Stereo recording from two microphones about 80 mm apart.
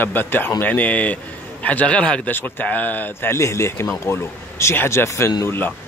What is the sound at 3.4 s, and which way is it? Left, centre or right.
A man's voice, left.